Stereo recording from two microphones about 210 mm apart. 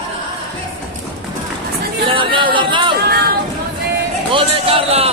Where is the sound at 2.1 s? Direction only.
25° right (ahead or behind).